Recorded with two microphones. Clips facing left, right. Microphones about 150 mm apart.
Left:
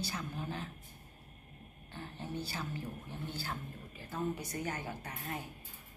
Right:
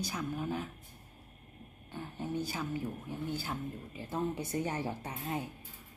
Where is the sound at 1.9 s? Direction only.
10° right (ahead or behind).